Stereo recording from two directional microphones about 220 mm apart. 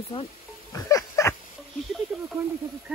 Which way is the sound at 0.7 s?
15° left (ahead or behind).